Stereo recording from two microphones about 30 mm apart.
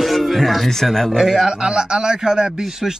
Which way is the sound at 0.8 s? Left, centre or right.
Centre.